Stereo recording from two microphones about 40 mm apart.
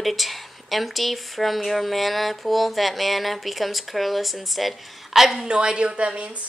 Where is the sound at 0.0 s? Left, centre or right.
Centre.